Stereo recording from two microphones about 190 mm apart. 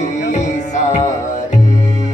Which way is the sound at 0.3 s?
40° left (ahead or behind).